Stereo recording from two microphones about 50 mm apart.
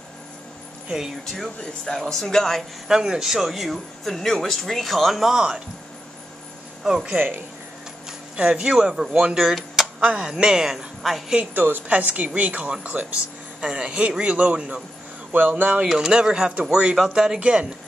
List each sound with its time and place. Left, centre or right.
0.8 s speech: centre
1.2 s speech: centre
1.6 s a man's voice: centre
2.9 s speech: centre
6.8 s speech: centre
8.4 s speech: centre
9.9 s speech: right
10.2 s speech: centre
11.5 s a woman's voice: right
12.4 s a man's voice: right
15.3 s a woman's voice: right
15.8 s a man's voice: centre